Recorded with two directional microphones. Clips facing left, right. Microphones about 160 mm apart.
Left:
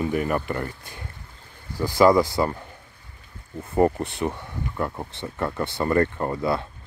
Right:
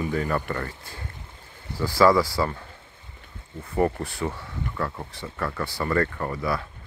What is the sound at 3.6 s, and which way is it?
Speech, 25° left (ahead or behind).